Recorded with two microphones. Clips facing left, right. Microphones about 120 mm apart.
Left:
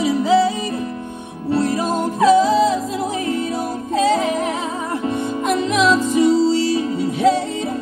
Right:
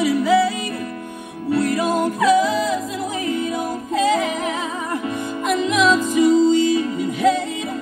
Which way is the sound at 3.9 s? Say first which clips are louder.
Left 2 dB; 35° left (ahead or behind).